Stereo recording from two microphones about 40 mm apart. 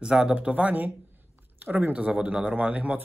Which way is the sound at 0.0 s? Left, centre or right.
Centre.